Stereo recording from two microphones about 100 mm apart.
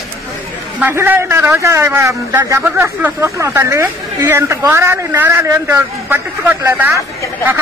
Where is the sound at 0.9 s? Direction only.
25° right (ahead or behind).